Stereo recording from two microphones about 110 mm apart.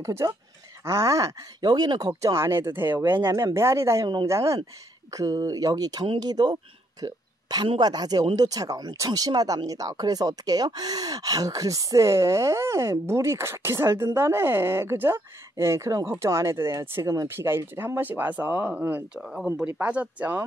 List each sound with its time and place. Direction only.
0.0 s speech: 30° right (ahead or behind)
17.5 s speech: 20° right (ahead or behind)
19.2 s speech: 5° right (ahead or behind)